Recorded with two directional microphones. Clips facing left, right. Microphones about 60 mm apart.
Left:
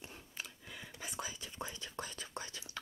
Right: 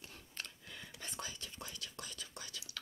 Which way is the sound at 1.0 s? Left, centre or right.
Centre.